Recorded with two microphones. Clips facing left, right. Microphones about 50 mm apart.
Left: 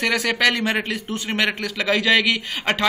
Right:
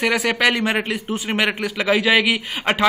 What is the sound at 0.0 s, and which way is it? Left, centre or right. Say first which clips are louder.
Speech: right 1 dB; centre.